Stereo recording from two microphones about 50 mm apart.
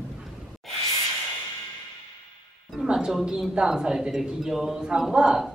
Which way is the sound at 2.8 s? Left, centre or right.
Centre.